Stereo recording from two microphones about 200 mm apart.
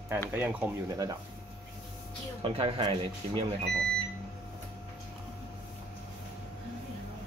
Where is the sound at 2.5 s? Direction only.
25° right (ahead or behind).